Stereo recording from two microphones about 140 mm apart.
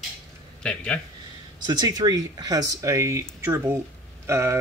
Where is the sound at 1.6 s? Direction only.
30° right (ahead or behind).